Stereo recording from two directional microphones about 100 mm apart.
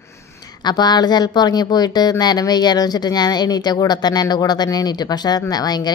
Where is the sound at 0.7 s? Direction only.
45° left (ahead or behind).